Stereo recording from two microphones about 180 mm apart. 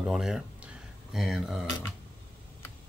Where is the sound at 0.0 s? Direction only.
5° right (ahead or behind).